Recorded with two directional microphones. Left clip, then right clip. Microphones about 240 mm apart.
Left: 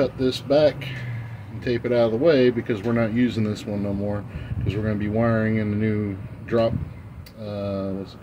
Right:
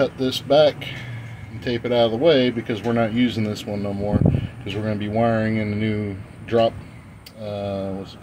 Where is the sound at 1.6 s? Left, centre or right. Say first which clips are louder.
Right 1 dB; centre.